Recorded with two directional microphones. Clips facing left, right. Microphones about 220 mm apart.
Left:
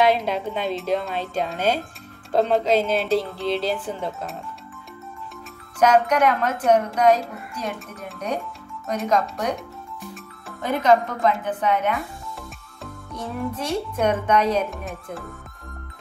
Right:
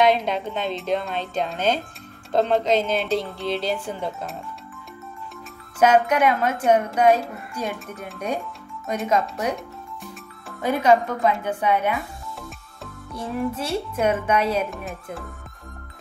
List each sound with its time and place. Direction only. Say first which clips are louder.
0.0 s speech: even; 5° left (ahead or behind)
5.8 s speech: even; 10° right (ahead or behind)
8.9 s speech: even; 5° right (ahead or behind)
10.6 s speech: even; 10° right (ahead or behind)
13.1 s speech: right 2 dB; 5° right (ahead or behind)